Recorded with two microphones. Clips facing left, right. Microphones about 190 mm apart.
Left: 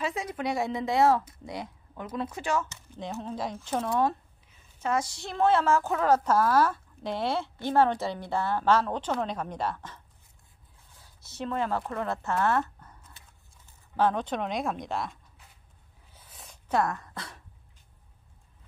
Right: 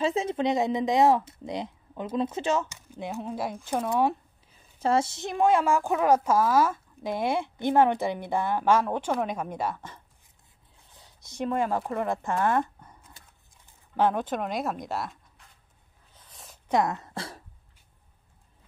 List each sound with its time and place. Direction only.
0.0 s a woman's voice: 25° right (ahead or behind); by 4.2 s 10° right (ahead or behind)
4.5 s a woman's voice: 30° right (ahead or behind); by 15.4 s 5° right (ahead or behind)
16.1 s a sound: 5° left (ahead or behind)
16.6 s speech: 15° right (ahead or behind)